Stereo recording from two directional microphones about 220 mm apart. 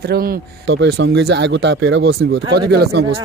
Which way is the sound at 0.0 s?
45° right (ahead or behind).